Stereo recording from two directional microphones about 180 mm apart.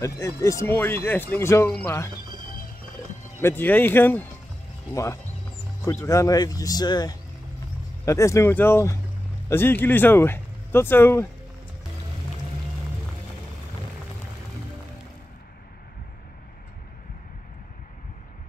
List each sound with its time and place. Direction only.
0.0 s speech: 15° left (ahead or behind)
3.3 s speech: 10° left (ahead or behind)